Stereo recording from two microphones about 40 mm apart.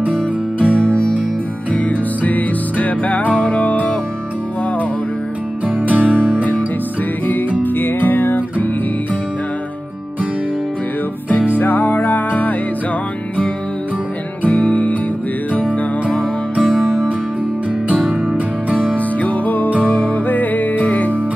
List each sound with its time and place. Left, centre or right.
0.0 s music: right
0.7 s music: left
1.7 s music: left
5.7 s music: right
7.6 s music: left
11.5 s music: left
14.5 s music: left
16.6 s music: centre
18.8 s music: left
19.9 s music: left
20.2 s music: left